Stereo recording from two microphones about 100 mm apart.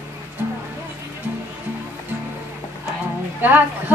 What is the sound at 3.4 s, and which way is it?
Music, 15° right (ahead or behind).